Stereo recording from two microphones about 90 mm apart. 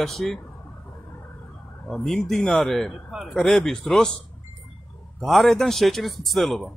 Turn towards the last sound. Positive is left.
turn(degrees=0)  # may be behind; listen again after turning